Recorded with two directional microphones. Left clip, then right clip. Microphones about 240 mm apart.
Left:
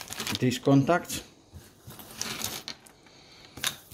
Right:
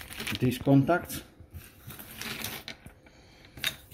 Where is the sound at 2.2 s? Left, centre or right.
Left.